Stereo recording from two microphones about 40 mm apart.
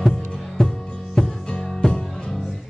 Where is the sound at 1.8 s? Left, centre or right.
Centre.